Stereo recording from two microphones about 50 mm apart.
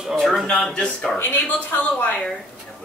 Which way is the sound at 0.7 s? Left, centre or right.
Centre.